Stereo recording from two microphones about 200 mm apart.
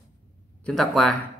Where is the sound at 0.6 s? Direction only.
Centre (ahead or behind).